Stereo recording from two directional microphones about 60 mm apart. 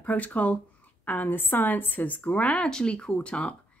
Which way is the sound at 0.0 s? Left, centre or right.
Left.